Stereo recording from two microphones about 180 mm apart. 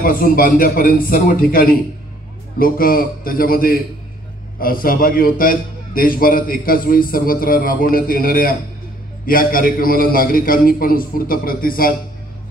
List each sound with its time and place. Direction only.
0.0 s a man's voice: 50° left (ahead or behind)